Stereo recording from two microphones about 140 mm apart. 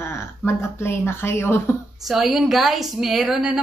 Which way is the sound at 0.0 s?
20° left (ahead or behind).